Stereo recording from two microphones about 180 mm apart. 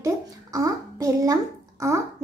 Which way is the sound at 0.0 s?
20° right (ahead or behind).